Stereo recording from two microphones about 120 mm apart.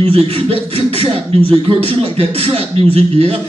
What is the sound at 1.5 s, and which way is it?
Speech, 50° right (ahead or behind).